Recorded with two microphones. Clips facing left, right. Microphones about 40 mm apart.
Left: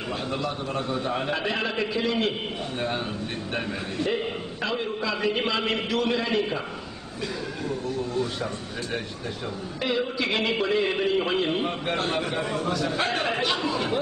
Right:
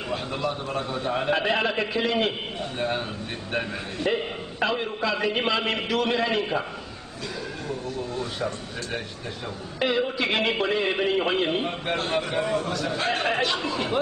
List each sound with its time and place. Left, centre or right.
0.1 s a man's voice: centre
1.3 s speech: centre
3.5 s speech: centre
9.8 s a man's voice: centre